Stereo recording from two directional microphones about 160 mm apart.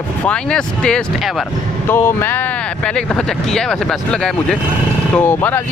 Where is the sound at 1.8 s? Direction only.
15° left (ahead or behind).